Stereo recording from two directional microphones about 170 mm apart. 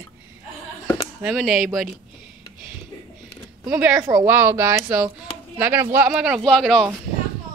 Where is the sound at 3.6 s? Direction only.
5° right (ahead or behind).